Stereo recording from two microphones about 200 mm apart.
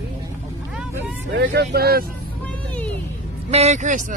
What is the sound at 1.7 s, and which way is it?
Speech, 50° right (ahead or behind).